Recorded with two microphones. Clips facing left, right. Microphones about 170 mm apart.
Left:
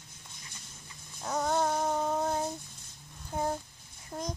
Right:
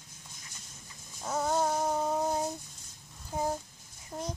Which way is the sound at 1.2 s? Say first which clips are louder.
Even; 5° right (ahead or behind).